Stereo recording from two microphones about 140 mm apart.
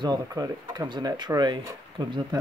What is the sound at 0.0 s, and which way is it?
Speech, 30° right (ahead or behind).